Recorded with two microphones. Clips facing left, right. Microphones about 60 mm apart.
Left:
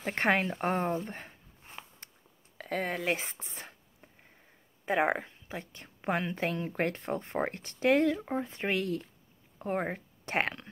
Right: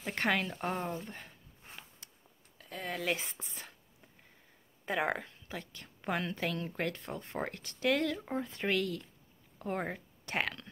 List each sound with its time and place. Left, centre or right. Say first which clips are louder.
0.0 s speech: left 4 dB; left
2.5 s a sound: left 11 dB; left
3.1 s speech: left 3 dB; left
8.1 s speech: left 4 dB; centre